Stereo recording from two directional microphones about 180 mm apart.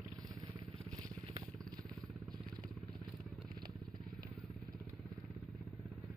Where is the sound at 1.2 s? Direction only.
20° right (ahead or behind).